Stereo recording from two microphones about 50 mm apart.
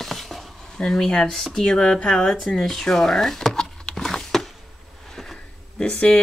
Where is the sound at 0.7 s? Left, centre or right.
Centre.